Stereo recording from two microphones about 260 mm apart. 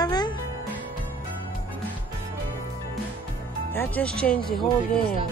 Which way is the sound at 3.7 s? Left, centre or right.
Centre.